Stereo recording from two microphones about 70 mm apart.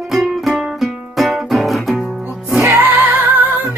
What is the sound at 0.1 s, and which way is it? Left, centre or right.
Music, centre.